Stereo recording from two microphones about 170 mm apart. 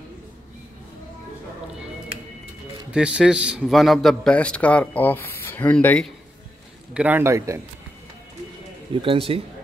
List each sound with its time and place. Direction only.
2.9 s a man's voice: 5° right (ahead or behind)
6.9 s a man's voice: 10° right (ahead or behind)
8.9 s speech: 30° right (ahead or behind)